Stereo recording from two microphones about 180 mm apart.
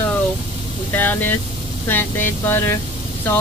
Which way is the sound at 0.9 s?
10° left (ahead or behind).